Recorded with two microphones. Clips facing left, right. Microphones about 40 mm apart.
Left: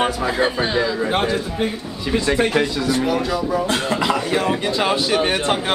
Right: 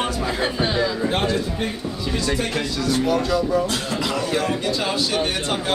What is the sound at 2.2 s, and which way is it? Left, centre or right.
Speech, left.